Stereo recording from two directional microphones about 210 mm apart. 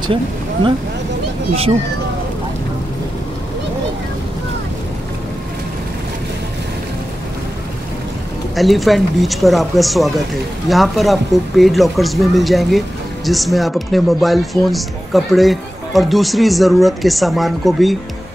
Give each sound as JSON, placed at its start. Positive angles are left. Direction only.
{"t": 1.5, "sound": "speech", "side_deg": -30}
{"t": 8.5, "sound": "speech", "side_deg": 0}